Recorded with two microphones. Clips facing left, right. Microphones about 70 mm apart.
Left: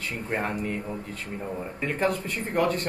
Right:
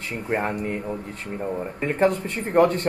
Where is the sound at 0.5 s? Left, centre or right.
Right.